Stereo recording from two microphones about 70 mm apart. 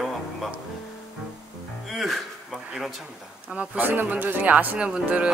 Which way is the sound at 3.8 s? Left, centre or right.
Right.